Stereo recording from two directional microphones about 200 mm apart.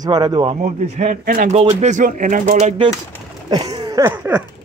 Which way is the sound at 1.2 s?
50° right (ahead or behind).